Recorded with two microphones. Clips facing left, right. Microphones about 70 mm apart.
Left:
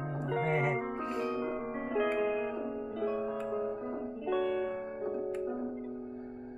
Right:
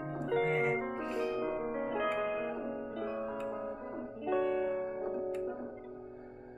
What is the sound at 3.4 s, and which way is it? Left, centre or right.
Music, centre.